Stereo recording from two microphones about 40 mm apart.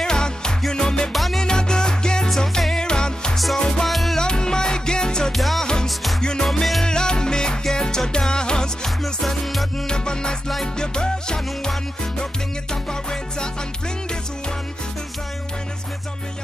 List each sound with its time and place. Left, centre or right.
0.0 s music: centre
1.1 s music: centre
1.4 s music: centre
3.8 s music: centre
4.2 s music: centre
5.3 s music: centre
5.6 s music: centre
6.6 s music: centre
6.9 s music: centre
9.0 s music: centre